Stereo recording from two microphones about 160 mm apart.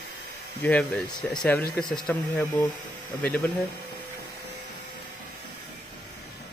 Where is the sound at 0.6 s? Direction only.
10° left (ahead or behind).